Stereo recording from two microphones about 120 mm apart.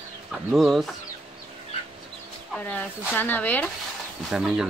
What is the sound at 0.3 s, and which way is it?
Speech, centre (ahead or behind).